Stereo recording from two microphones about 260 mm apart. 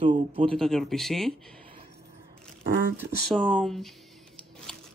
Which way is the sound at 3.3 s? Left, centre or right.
Centre.